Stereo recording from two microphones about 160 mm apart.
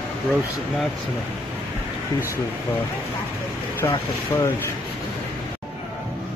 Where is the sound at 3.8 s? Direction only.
15° left (ahead or behind).